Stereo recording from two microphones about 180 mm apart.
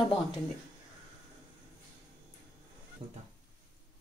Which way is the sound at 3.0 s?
35° right (ahead or behind).